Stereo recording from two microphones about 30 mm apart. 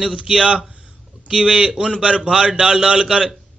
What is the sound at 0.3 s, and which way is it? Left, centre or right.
A man's voice, right.